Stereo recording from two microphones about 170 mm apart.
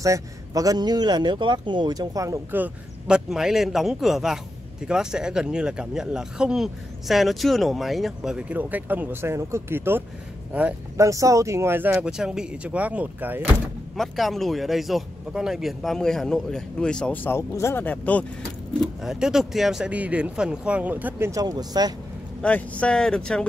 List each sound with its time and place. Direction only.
0.0 s a man's voice: 20° right (ahead or behind); by 18.2 s 10° left (ahead or behind)
18.8 s speech: 5° right (ahead or behind); by 21.9 s 25° right (ahead or behind)
22.4 s speech: 5° left (ahead or behind)